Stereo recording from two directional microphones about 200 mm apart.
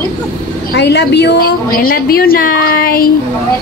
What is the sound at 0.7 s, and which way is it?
A woman's voice, 60° left (ahead or behind).